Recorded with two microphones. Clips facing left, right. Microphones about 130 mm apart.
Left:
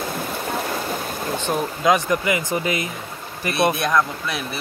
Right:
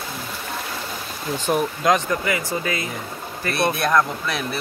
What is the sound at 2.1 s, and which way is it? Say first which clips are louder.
Speech: left 2 dB; 20° left (ahead or behind).